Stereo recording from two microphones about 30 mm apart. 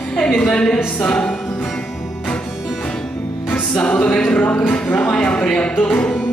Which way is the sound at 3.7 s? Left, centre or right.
Left.